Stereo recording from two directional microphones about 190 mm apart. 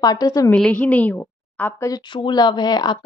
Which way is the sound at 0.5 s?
5° left (ahead or behind).